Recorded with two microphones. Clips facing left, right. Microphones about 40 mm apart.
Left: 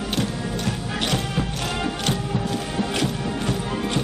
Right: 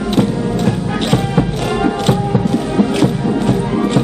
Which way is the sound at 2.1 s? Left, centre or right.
Right.